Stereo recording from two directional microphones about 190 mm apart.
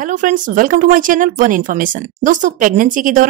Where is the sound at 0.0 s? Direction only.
45° right (ahead or behind).